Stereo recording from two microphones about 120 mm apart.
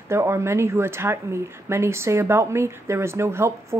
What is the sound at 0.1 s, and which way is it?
A woman's voice, 20° right (ahead or behind).